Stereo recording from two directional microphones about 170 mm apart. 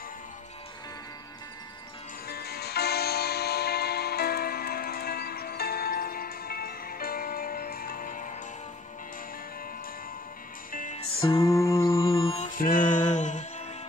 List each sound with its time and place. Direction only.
2.2 s music: 65° left (ahead or behind)
10.7 s music: 50° left (ahead or behind)
11.0 s music: 35° left (ahead or behind)
11.4 s music: 15° left (ahead or behind)
11.9 s music: 30° left (ahead or behind)
12.5 s music: 55° left (ahead or behind)